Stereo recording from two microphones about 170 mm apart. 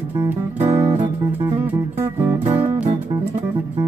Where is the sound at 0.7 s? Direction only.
20° right (ahead or behind).